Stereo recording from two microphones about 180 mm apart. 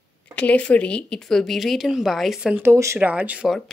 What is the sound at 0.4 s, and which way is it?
Speech, 5° left (ahead or behind).